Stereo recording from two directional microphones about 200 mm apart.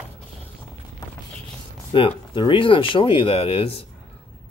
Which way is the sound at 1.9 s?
25° left (ahead or behind).